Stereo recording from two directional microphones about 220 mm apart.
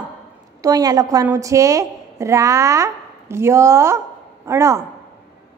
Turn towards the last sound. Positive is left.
turn(degrees=-15)  # may be behind; listen again after turning